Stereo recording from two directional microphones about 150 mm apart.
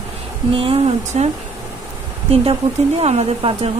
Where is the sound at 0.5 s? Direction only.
40° right (ahead or behind).